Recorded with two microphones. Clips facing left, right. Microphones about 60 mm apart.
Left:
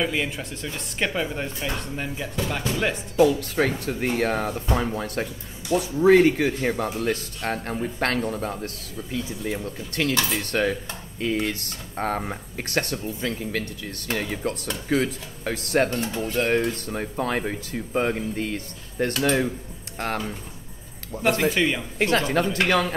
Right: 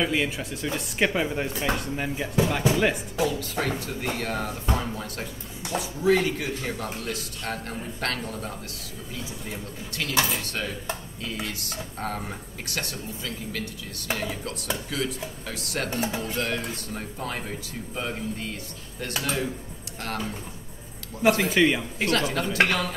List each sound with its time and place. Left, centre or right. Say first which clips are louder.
0.0 s speech: even; centre
3.2 s speech: left 12 dB; left
15.9 s speech: even; centre
16.3 s speech: left 7 dB; left
21.2 s speech: right 1 dB; centre
22.0 s speech: left 5 dB; left